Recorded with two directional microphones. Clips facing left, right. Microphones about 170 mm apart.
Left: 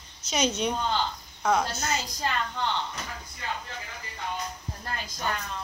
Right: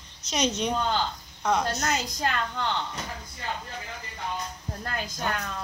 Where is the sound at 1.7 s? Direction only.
70° right (ahead or behind).